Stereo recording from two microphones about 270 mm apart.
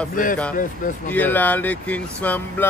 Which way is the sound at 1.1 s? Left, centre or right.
Centre.